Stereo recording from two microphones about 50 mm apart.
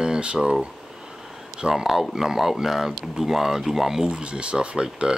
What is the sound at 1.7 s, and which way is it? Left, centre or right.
Speech, centre.